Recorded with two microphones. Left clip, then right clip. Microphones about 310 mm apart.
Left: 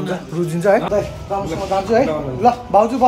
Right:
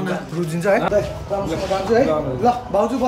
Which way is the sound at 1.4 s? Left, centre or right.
Centre.